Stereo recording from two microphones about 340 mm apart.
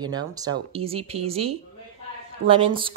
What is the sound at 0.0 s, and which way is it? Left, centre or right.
Speech, centre.